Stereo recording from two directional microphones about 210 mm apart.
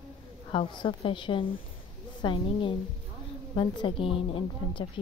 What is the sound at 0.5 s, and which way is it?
A woman's voice, 25° left (ahead or behind).